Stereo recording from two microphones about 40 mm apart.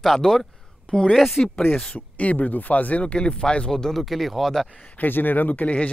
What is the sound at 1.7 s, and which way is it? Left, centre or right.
Speech, left.